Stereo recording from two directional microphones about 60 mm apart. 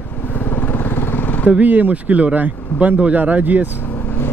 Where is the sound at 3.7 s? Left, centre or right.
Left.